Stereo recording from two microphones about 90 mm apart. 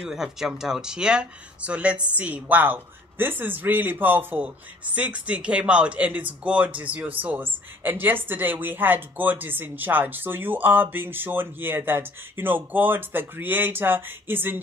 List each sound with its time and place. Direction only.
0.0 s speech: 5° right (ahead or behind); by 14.6 s 20° right (ahead or behind)